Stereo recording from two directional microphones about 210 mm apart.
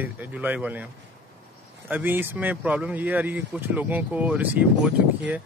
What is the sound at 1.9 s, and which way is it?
Speech, 10° right (ahead or behind).